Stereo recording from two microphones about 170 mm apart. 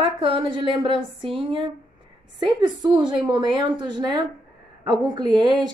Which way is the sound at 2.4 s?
25° right (ahead or behind).